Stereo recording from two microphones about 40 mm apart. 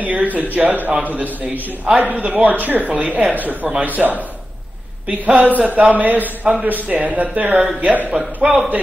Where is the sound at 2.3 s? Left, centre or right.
Right.